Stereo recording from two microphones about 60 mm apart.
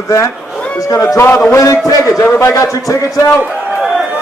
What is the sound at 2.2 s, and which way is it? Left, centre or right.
Speech, left.